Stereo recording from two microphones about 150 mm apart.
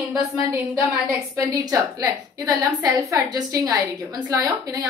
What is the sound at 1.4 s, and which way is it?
A woman's voice, 25° right (ahead or behind).